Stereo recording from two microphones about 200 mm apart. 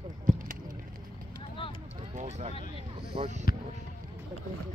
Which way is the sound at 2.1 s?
35° right (ahead or behind).